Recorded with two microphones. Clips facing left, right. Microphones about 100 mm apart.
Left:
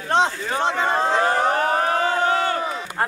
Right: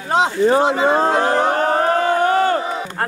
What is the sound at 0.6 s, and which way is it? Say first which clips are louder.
Speech: right 6 dB; 5° right (ahead or behind).